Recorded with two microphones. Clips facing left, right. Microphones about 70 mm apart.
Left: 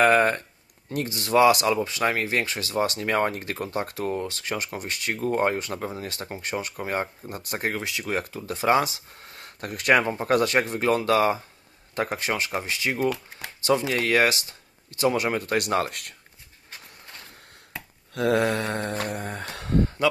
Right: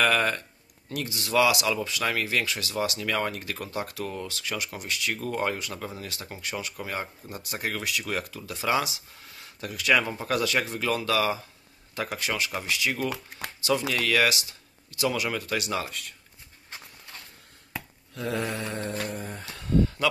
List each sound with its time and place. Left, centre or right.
0.0 s a sound: left
0.9 s speech: left
6.4 s speech: left
7.7 s speech: left
10.0 s speech: left
18.1 s mantra: left
20.0 s speech: left